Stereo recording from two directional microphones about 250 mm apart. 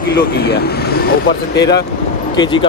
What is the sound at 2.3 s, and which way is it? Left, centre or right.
Speech, centre.